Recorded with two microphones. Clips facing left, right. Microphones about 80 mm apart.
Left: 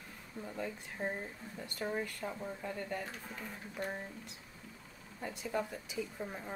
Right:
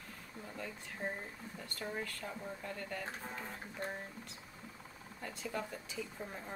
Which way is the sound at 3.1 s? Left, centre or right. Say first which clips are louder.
Right 2 dB; right.